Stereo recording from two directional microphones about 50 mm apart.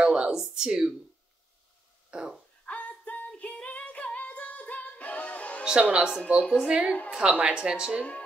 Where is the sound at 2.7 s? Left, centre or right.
Left.